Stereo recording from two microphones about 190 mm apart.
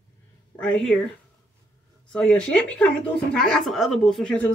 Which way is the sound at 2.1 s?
5° left (ahead or behind).